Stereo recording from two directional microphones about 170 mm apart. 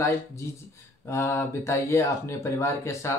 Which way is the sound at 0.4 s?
15° left (ahead or behind).